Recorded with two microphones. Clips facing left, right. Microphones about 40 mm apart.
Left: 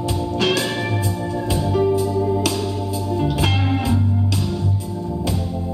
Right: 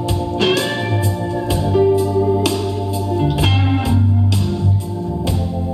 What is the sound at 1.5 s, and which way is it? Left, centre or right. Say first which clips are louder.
Organ: right 4 dB; centre.